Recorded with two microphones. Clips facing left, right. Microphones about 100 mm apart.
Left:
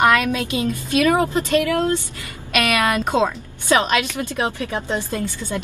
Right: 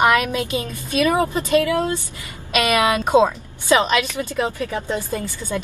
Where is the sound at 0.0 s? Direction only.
15° right (ahead or behind).